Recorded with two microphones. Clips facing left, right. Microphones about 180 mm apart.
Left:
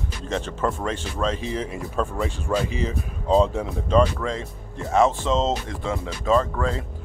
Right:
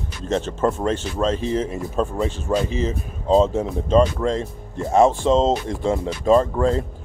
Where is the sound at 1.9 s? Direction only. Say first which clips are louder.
Right 3 dB; 20° right (ahead or behind).